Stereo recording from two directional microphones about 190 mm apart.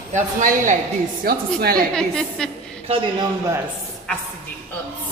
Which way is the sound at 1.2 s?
55° right (ahead or behind).